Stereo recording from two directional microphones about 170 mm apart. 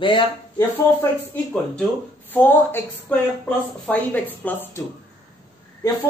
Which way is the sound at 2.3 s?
10° left (ahead or behind).